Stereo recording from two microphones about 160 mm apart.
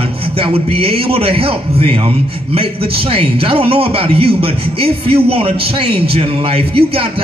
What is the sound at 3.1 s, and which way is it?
Speech, 35° right (ahead or behind).